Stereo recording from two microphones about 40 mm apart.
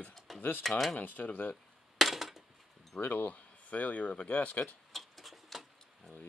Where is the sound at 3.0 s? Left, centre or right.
Left.